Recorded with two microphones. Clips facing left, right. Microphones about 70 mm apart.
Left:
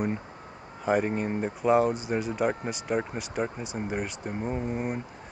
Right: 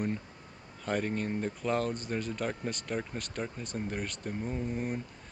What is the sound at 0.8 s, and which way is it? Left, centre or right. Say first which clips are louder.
Speech: left 6 dB; centre.